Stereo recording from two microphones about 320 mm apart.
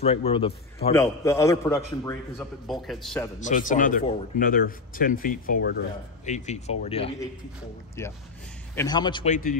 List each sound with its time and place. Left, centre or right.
0.0 s a man's voice: centre
3.3 s a man's voice: left